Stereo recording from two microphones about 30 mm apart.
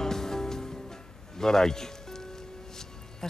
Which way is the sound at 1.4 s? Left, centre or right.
Centre.